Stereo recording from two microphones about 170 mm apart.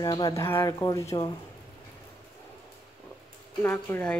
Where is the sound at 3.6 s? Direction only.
15° left (ahead or behind).